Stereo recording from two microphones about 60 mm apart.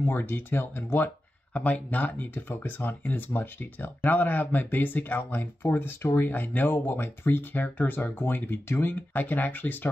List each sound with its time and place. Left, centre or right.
0.0 s speech: left